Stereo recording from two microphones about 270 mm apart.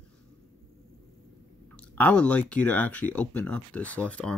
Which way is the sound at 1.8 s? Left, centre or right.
Centre.